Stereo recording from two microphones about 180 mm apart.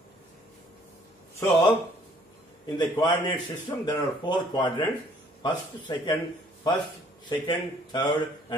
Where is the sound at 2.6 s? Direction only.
25° left (ahead or behind).